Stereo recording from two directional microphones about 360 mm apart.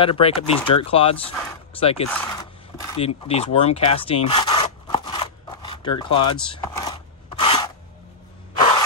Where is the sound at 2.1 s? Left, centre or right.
Centre.